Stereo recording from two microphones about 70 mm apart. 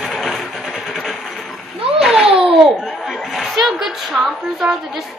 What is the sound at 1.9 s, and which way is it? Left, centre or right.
A child's voice, centre.